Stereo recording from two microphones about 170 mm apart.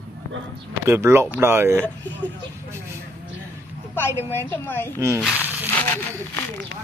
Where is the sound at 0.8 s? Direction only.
15° right (ahead or behind).